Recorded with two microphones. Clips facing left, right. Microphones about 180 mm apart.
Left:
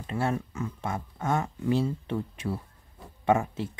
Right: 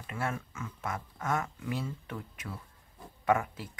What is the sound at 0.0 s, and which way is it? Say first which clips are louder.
Speech: left 7 dB; 30° left (ahead or behind).